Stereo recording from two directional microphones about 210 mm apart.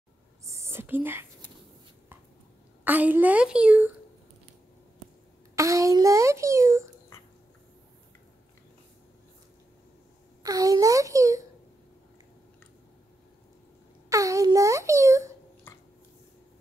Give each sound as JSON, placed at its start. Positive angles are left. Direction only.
{"t": 0.5, "sound": "speech", "side_deg": -15}
{"t": 2.8, "sound": "a woman's voice", "side_deg": -10}
{"t": 5.6, "sound": "a child's voice", "side_deg": -15}
{"t": 10.4, "sound": "a child's voice", "side_deg": -15}
{"t": 14.0, "sound": "a sound", "side_deg": -15}